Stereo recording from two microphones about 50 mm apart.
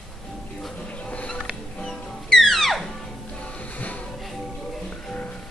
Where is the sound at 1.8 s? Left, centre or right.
Centre.